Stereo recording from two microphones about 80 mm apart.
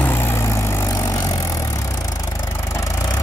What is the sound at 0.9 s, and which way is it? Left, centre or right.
Vehicle, left.